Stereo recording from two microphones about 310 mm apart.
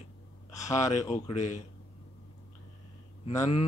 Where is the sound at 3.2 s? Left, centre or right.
Centre.